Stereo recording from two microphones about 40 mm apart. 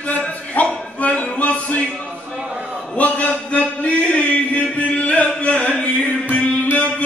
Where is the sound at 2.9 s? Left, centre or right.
Left.